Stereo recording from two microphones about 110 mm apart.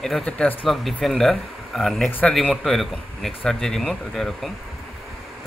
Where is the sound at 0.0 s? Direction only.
5° left (ahead or behind).